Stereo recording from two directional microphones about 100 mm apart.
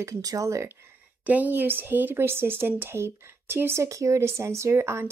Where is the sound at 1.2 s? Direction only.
15° right (ahead or behind).